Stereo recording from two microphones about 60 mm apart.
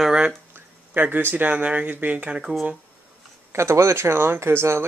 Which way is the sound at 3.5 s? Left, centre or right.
Right.